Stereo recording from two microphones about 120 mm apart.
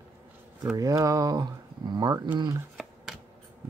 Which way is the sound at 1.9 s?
35° right (ahead or behind).